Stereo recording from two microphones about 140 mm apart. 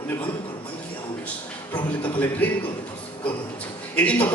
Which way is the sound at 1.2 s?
10° left (ahead or behind).